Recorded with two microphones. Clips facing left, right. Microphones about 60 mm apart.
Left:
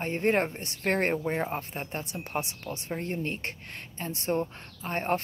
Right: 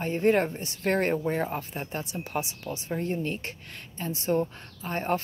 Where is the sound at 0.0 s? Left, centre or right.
Left.